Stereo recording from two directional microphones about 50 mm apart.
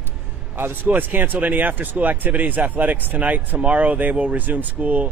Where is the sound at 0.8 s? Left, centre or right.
Right.